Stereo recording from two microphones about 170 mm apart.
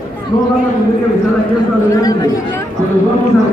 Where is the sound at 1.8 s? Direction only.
20° left (ahead or behind).